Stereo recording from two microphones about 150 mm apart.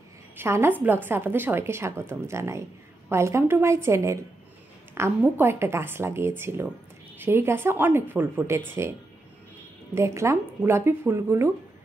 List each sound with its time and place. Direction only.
0.4 s a woman's voice: 15° right (ahead or behind)
9.9 s a woman's voice: 20° right (ahead or behind)